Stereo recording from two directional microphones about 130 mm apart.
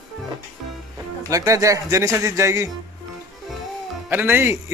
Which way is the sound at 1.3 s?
25° right (ahead or behind).